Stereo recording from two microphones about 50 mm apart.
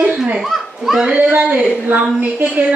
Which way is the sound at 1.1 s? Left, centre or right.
Right.